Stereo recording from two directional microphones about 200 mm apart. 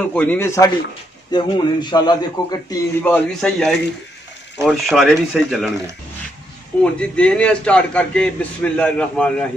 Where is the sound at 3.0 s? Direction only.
5° left (ahead or behind).